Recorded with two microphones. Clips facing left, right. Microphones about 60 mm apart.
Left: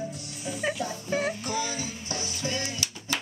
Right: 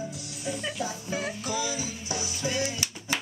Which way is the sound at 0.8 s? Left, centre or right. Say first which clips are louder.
Left 3 dB; centre.